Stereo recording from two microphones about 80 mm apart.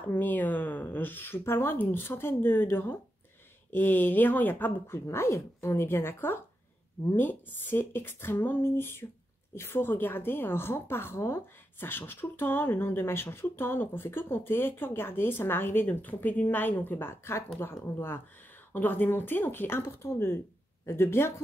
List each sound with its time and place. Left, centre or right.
0.1 s a woman's voice: left
5.0 s a woman's voice: left